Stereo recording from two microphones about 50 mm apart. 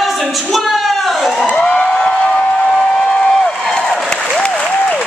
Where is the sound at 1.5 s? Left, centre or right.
Left.